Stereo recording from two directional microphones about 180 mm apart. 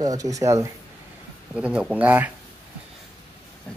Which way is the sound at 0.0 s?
20° right (ahead or behind).